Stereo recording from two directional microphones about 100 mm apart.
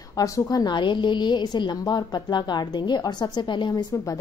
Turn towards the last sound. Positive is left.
turn(degrees=40)  # may be behind; listen again after turning